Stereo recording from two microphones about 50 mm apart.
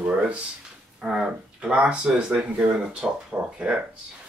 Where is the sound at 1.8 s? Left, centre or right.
Right.